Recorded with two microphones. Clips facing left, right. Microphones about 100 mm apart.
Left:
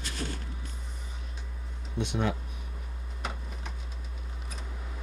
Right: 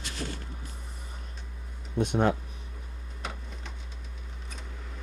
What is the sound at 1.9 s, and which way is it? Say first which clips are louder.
Speech: right 5 dB; 45° right (ahead or behind).